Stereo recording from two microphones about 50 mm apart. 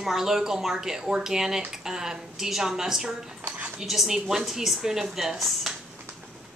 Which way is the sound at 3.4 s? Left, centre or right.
Right.